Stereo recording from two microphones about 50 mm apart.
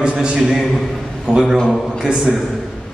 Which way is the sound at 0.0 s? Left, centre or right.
Centre.